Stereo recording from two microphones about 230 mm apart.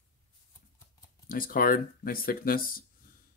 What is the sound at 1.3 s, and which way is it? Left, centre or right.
Speech, left.